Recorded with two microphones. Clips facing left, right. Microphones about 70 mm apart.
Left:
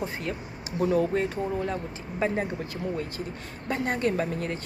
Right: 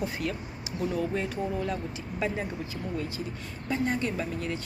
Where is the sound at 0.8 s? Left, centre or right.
Left.